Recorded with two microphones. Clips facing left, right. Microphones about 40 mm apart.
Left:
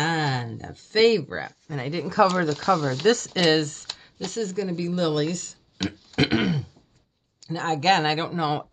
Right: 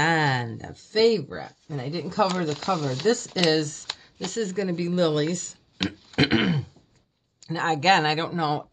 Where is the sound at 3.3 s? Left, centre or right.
Left.